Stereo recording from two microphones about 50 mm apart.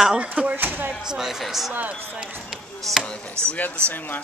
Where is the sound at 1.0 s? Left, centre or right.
Centre.